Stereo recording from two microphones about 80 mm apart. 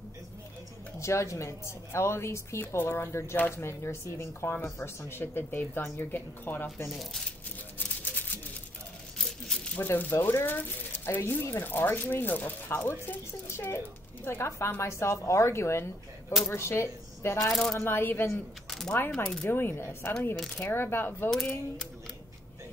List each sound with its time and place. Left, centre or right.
0.9 s speech: left
9.2 s coin: centre
9.8 s speech: left
17.4 s speech: centre
17.7 s speech: left
18.7 s mechanisms: centre
18.9 s speech: left
21.3 s speech: centre